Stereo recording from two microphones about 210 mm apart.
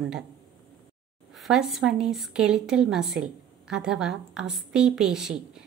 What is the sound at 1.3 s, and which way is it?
Speech, centre (ahead or behind).